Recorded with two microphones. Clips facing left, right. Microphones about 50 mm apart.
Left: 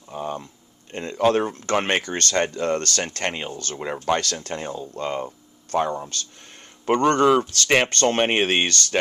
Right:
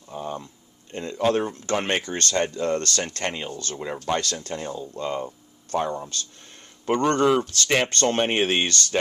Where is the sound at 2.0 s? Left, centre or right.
Left.